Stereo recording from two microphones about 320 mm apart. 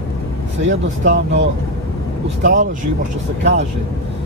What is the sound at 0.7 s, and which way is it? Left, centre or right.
Speech, right.